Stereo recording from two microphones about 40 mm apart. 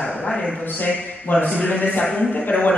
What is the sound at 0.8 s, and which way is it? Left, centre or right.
A man's voice, left.